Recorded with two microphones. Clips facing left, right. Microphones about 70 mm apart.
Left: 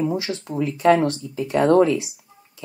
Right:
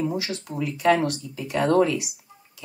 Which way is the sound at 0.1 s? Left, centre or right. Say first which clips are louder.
Left 4 dB; left.